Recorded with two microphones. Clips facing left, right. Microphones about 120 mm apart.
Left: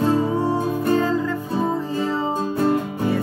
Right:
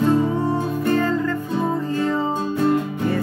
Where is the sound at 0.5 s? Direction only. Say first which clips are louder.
Left 1 dB; 15° left (ahead or behind).